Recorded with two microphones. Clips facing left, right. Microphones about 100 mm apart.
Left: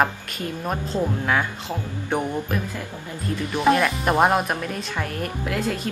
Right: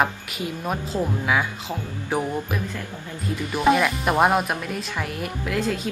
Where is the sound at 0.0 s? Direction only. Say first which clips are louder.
Left 1 dB; 5° right (ahead or behind).